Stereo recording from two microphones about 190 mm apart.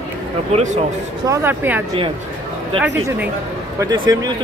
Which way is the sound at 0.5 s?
40° right (ahead or behind).